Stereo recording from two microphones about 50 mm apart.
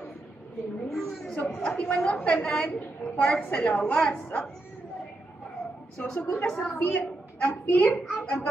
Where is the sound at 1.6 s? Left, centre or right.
Left.